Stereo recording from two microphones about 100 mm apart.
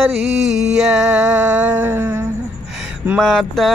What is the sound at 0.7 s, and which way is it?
Male singing, 10° right (ahead or behind).